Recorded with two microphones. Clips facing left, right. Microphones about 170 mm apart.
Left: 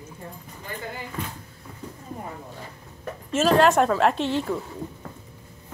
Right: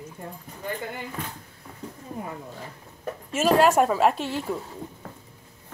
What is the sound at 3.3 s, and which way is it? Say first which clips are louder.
A woman's voice: left 1 dB; 10° right (ahead or behind).